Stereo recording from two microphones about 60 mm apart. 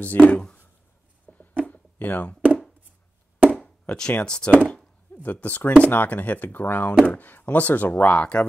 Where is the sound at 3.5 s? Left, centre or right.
Left.